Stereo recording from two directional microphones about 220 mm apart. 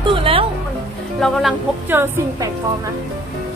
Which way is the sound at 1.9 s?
10° right (ahead or behind).